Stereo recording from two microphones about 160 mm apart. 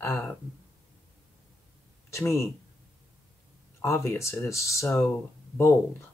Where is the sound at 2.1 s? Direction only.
15° left (ahead or behind).